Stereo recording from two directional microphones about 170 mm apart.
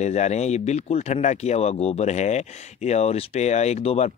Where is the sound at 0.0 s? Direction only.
40° left (ahead or behind).